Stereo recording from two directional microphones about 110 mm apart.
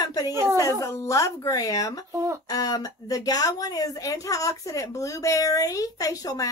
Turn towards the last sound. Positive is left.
turn(degrees=35)  # may be behind; listen again after turning